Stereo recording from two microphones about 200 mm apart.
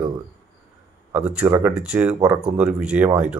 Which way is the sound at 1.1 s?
5° right (ahead or behind).